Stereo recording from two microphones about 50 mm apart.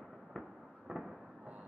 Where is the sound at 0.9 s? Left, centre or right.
Centre.